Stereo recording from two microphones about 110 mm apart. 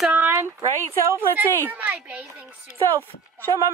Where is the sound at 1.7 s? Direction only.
15° right (ahead or behind).